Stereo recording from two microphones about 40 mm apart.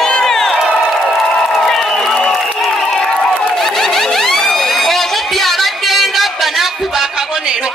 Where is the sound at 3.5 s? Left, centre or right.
Centre; by 7.7 s right.